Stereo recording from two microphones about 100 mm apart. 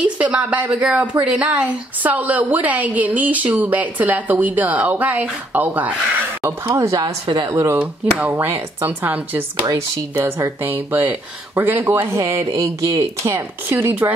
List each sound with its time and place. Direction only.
0.0 s speech: 15° right (ahead or behind)
6.4 s speech: 30° right (ahead or behind)
7.2 s speech: 50° right (ahead or behind)
7.5 s speech: 30° right (ahead or behind)
12.2 s speech: 35° right (ahead or behind)
13.3 s speech: 25° right (ahead or behind)